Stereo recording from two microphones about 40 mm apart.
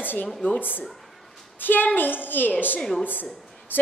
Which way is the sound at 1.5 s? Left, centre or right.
Left.